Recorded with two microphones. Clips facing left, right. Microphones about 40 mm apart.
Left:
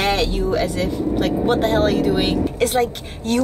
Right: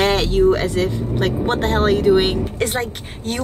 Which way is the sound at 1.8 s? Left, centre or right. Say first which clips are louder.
Right 3 dB; right.